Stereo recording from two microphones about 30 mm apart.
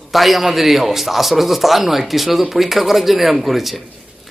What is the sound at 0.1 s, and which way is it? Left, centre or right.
A man's voice, centre.